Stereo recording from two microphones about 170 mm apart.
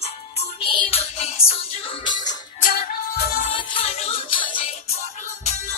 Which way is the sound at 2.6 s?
60° left (ahead or behind).